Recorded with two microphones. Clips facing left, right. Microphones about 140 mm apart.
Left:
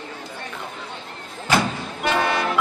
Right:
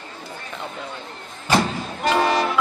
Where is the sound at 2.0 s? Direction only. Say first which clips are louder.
Right 3 dB; 40° right (ahead or behind).